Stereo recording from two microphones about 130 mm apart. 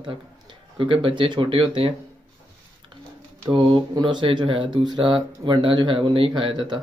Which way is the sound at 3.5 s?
40° right (ahead or behind).